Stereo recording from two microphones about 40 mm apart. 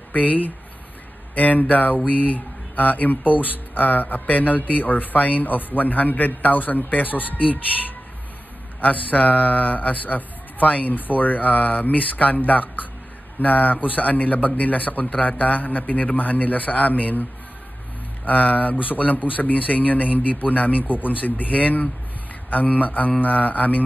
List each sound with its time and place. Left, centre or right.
0.1 s speech: left
8.8 s a man's voice: left